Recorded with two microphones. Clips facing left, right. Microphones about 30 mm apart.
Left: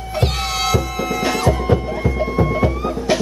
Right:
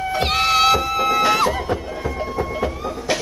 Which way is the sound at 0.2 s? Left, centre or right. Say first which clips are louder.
Right 4 dB; right.